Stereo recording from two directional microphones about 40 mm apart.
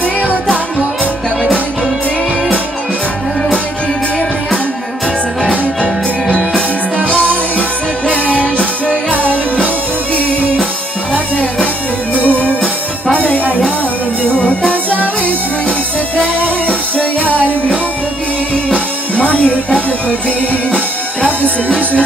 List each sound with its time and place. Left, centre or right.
8.1 s music: right
11.3 s music: left
16.3 s music: left
18.7 s music: left